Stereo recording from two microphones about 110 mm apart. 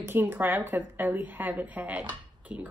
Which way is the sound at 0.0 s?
20° right (ahead or behind).